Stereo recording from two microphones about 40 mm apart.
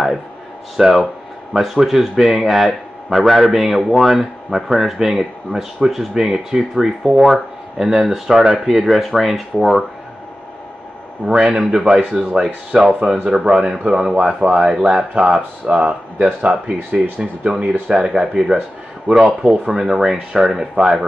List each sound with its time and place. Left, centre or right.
0.7 s a man's voice: centre
11.2 s a man's voice: right
12.1 s speech: right
12.8 s a man's voice: centre
15.1 s a man's voice: centre
15.7 s a man's voice: right; by 20.9 s centre